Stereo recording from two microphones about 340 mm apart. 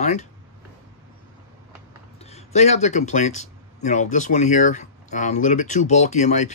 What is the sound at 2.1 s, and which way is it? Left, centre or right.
Speech, centre.